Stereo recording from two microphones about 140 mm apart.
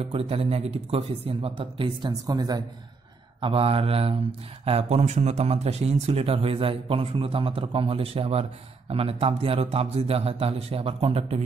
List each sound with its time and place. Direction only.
0.0 s speech: 45° right (ahead or behind); by 2.6 s 30° right (ahead or behind)
3.3 s speech: 40° right (ahead or behind)